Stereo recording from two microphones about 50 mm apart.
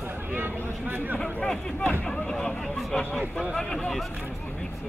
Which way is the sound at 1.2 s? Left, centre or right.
Centre.